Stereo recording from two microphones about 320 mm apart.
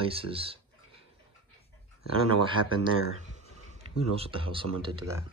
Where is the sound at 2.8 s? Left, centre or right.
Right.